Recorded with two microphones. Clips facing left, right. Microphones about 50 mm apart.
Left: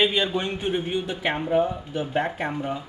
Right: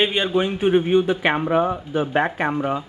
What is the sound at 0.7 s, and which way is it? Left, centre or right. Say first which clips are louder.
Speech: right 12 dB; right.